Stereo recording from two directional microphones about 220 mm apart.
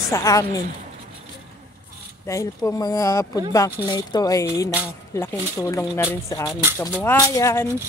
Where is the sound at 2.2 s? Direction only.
15° left (ahead or behind).